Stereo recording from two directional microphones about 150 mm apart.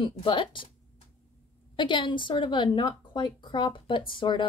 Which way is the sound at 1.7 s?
30° left (ahead or behind).